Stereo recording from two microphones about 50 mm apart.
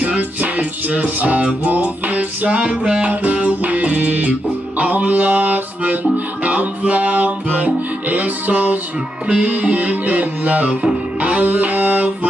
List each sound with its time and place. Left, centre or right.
0.0 s music: right